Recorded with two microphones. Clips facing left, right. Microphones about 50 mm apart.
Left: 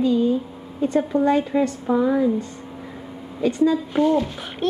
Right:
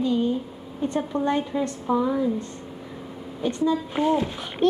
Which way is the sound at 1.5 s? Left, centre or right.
Left.